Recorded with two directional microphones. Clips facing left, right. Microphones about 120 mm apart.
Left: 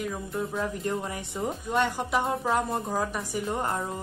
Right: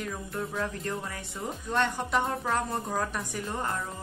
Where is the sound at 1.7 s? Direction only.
10° left (ahead or behind).